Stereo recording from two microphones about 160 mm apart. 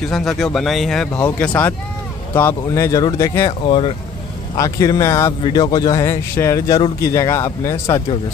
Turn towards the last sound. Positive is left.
turn(degrees=20)  # may be behind; listen again after turning